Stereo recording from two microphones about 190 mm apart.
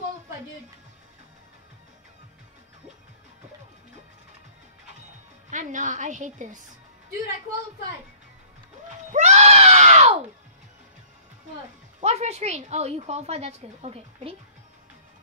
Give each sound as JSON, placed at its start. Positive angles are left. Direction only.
{"t": 5.5, "sound": "a woman's voice", "side_deg": -40}
{"t": 9.1, "sound": "screaming", "side_deg": -35}
{"t": 12.0, "sound": "a woman's voice", "side_deg": -35}